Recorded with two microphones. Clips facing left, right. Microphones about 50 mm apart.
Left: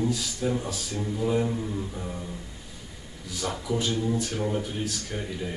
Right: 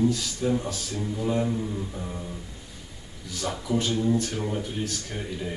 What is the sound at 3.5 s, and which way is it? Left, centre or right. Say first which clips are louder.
Speech: right 2 dB; centre.